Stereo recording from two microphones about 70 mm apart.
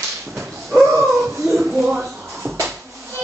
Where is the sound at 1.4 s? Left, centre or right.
Centre.